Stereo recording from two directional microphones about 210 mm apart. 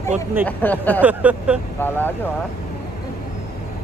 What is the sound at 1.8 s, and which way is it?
Speech, 10° left (ahead or behind).